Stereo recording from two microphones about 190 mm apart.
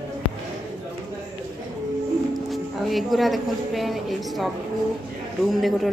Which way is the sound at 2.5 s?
Centre (ahead or behind).